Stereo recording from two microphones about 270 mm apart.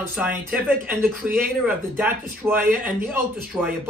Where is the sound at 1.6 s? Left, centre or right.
Centre.